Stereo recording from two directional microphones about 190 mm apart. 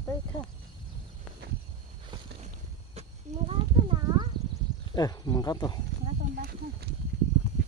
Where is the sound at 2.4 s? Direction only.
35° right (ahead or behind).